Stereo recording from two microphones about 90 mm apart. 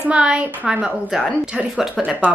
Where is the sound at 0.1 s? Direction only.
10° right (ahead or behind).